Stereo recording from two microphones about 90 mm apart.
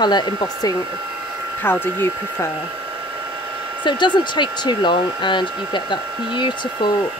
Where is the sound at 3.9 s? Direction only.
60° left (ahead or behind).